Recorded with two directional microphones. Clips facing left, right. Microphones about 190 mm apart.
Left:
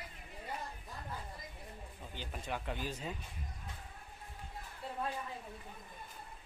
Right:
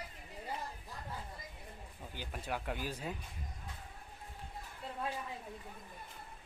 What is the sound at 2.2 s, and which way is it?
Speech, 5° right (ahead or behind).